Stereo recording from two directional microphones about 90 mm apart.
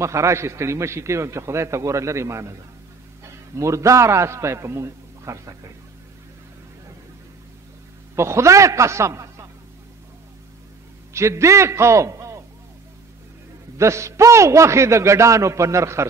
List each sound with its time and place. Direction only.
0.0 s a man's voice: 35° right (ahead or behind)
3.5 s a man's voice: 35° right (ahead or behind)
8.2 s a man's voice: 30° right (ahead or behind)
11.1 s a man's voice: 30° right (ahead or behind)
13.7 s a man's voice: 35° right (ahead or behind)